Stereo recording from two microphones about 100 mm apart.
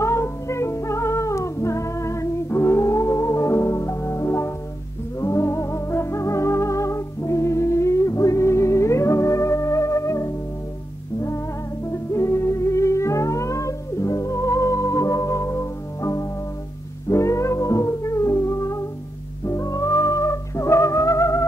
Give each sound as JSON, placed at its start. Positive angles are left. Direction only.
{"t": 0.0, "sound": "music", "side_deg": 30}